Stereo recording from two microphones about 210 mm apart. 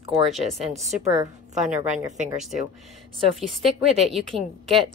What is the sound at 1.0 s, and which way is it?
Speech, 15° right (ahead or behind).